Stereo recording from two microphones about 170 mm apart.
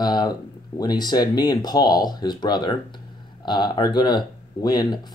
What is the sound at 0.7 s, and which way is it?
Speech, 25° left (ahead or behind).